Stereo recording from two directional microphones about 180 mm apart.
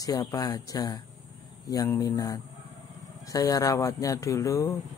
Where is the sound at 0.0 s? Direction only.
20° left (ahead or behind).